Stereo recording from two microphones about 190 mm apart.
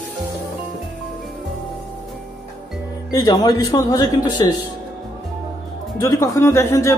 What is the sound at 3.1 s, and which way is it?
Speech, 20° left (ahead or behind).